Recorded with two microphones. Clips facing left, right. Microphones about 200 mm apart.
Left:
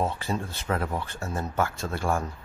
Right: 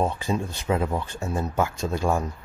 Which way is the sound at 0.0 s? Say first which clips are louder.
Right 3 dB; 15° right (ahead or behind).